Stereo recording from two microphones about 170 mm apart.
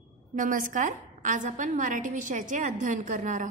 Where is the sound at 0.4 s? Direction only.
50° right (ahead or behind).